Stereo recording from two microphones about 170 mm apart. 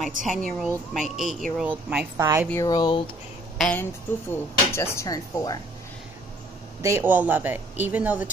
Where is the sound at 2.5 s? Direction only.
20° left (ahead or behind).